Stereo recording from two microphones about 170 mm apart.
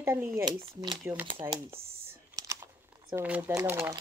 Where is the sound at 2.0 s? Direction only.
15° right (ahead or behind).